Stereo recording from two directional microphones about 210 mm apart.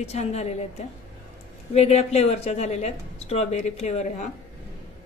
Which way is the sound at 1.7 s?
30° left (ahead or behind).